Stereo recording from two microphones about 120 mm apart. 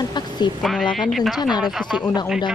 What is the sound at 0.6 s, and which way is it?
Speech, centre (ahead or behind).